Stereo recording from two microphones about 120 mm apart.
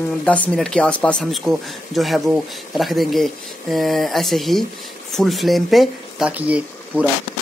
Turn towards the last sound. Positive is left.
turn(degrees=-10)  # may be behind; listen again after turning